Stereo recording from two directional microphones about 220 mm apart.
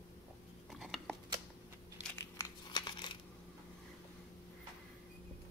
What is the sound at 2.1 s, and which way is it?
Crumpling, 15° left (ahead or behind).